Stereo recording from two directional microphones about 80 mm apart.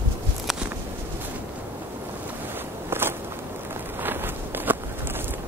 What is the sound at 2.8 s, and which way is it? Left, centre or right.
Biting, right.